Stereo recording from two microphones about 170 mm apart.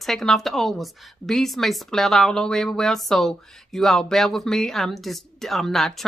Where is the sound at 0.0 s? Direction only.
Centre (ahead or behind).